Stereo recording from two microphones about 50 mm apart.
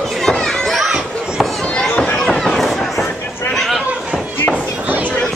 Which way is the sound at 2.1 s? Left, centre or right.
Centre.